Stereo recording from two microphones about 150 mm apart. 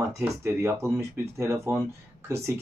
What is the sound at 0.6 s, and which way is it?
Speech, 20° right (ahead or behind).